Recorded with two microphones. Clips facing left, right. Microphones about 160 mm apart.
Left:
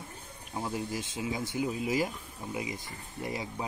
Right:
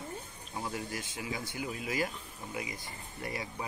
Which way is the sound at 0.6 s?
20° left (ahead or behind).